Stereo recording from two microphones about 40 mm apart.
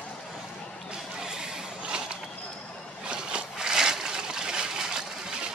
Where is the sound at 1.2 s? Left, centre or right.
Centre.